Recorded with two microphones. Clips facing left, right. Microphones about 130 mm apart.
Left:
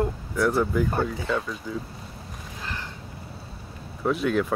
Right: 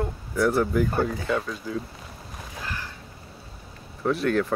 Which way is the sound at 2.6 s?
25° left (ahead or behind).